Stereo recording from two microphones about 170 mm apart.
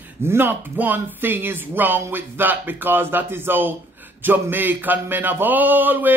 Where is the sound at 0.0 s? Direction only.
15° right (ahead or behind).